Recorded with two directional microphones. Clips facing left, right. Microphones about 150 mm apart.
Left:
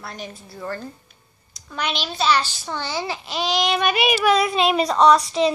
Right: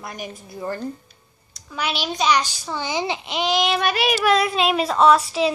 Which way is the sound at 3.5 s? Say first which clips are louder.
Left 1 dB; centre (ahead or behind).